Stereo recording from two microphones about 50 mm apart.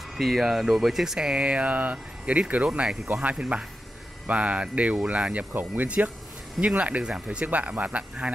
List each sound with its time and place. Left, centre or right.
0.2 s speech: centre
1.3 s speech: right
5.5 s speech: right
6.6 s speech: right